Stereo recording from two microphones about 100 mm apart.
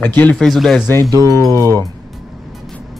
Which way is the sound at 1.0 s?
35° right (ahead or behind).